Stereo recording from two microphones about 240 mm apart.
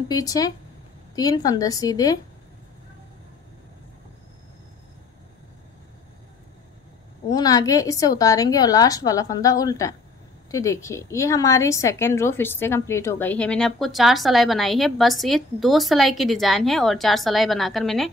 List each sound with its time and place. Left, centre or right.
0.1 s a woman's voice: centre
7.2 s a woman's voice: centre